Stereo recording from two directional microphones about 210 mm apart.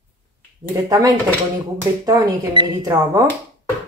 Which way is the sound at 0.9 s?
15° right (ahead or behind).